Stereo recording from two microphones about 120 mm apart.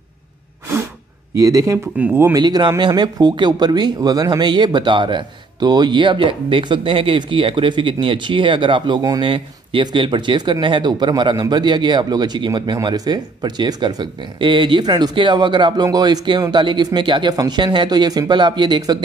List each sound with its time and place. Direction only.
1.4 s speech: 30° right (ahead or behind)
2.0 s speech: 15° right (ahead or behind)
2.3 s speech: 35° right (ahead or behind)